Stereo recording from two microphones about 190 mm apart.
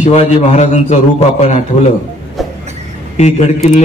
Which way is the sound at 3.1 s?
35° left (ahead or behind).